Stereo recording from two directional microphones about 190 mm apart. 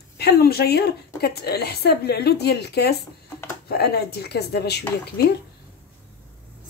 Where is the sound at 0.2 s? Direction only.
55° left (ahead or behind).